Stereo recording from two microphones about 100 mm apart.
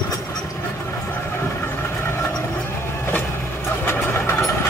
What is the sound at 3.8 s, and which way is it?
Vehicle, 25° left (ahead or behind).